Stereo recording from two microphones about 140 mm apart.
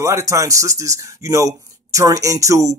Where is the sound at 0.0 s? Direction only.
20° right (ahead or behind).